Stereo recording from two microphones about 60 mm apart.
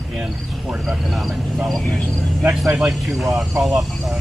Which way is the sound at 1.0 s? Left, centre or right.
Centre.